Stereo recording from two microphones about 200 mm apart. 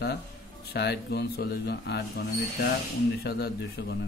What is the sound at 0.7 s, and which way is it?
Speech, 55° left (ahead or behind).